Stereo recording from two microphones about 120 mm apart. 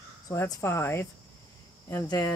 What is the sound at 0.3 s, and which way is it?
Speech, 25° left (ahead or behind).